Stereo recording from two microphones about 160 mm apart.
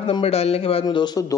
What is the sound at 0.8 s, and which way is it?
Speech, 25° left (ahead or behind).